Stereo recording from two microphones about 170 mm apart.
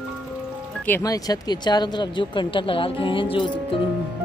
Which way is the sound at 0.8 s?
15° left (ahead or behind).